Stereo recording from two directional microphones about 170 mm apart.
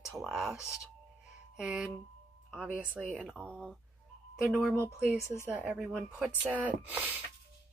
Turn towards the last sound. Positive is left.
turn(degrees=-10)  # may be behind; listen again after turning